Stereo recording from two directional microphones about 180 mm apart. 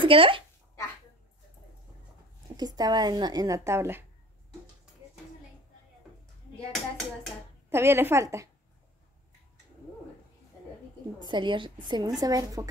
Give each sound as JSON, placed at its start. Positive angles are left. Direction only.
{"t": 0.0, "sound": "speech", "side_deg": -30}
{"t": 2.5, "sound": "speech", "side_deg": -20}
{"t": 6.7, "sound": "speech", "side_deg": 0}
{"t": 7.7, "sound": "a woman's voice", "side_deg": -15}
{"t": 11.1, "sound": "speech", "side_deg": -25}